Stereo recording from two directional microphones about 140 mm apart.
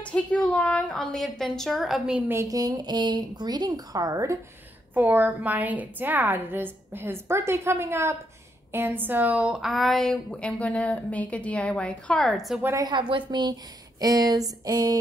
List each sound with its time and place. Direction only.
0.0 s a woman's voice: 10° left (ahead or behind)
2.3 s a woman's voice: 25° right (ahead or behind); by 12.6 s centre (ahead or behind)
12.9 s a woman's voice: 35° right (ahead or behind)